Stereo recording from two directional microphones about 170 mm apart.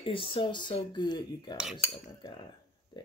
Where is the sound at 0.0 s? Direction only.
30° left (ahead or behind).